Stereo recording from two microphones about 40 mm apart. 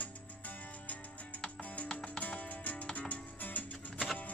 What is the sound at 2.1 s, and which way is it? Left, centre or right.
Music, left.